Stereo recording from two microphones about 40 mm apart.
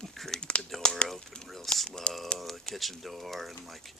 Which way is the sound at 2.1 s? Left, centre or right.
Left.